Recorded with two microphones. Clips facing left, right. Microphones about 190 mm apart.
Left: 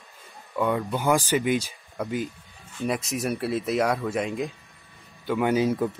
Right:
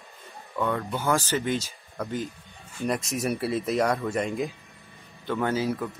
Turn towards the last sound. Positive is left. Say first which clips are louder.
# left 4 dB
turn(degrees=20)  # may be behind; listen again after turning